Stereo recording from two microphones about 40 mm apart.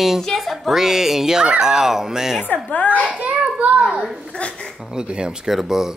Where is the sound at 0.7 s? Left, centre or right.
Centre.